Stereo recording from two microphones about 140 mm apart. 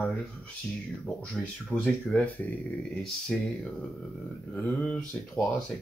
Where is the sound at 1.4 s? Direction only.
10° left (ahead or behind).